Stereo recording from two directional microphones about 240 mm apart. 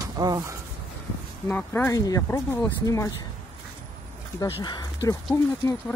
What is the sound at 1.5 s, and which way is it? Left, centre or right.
Speech, centre.